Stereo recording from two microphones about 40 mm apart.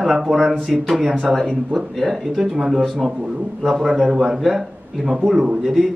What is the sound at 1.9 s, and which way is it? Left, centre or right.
A man's voice, centre.